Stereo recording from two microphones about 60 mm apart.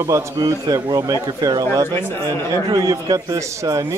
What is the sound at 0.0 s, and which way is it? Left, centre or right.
A man's voice, right.